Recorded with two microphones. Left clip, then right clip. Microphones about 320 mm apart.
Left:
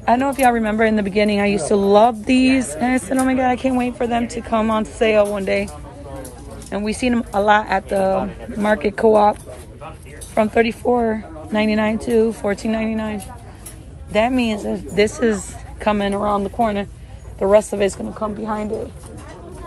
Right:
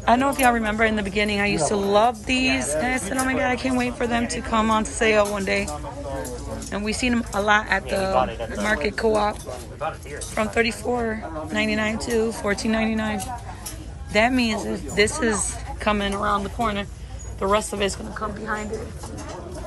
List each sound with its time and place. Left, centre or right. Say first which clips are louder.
0.0 s a woman's voice: left 3 dB; centre
6.7 s a woman's voice: left 4 dB; centre